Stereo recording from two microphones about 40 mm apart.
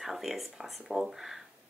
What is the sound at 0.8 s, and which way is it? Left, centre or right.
Speech, centre.